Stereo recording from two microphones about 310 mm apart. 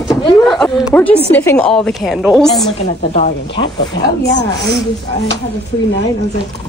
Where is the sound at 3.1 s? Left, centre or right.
Left.